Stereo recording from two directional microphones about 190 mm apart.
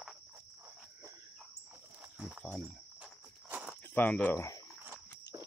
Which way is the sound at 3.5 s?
5° right (ahead or behind).